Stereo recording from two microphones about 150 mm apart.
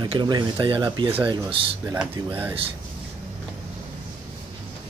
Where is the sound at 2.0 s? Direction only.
15° right (ahead or behind).